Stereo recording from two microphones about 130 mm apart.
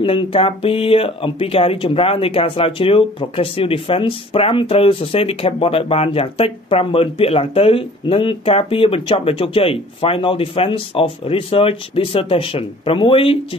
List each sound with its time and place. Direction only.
0.0 s speech: 45° left (ahead or behind)